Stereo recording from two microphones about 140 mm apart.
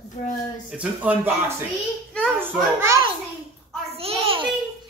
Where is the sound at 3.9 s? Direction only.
45° right (ahead or behind).